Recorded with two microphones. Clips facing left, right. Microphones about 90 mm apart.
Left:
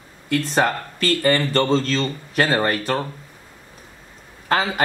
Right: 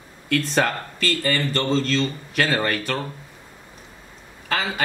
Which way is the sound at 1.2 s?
45° left (ahead or behind).